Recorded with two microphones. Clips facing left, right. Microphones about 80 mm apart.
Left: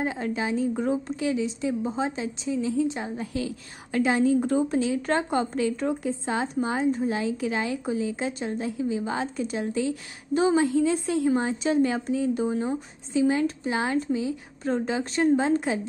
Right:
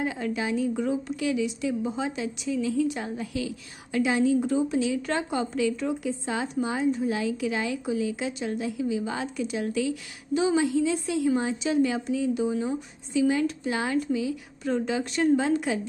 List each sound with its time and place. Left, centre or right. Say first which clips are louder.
0.0 s a woman's voice: left 1 dB; left
3.3 s a woman's voice: left 1 dB; left